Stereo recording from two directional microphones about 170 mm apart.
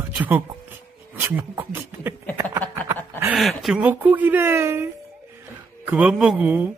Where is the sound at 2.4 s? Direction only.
15° right (ahead or behind).